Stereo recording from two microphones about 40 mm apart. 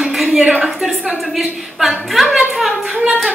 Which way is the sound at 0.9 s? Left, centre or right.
Right.